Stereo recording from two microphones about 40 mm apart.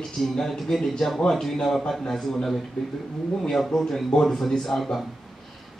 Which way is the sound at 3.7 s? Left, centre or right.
Centre.